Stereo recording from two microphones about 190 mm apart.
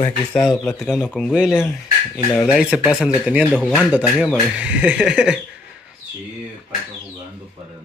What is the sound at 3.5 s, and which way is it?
Speech, 5° left (ahead or behind).